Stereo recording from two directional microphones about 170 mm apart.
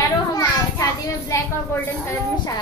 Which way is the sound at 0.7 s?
20° left (ahead or behind).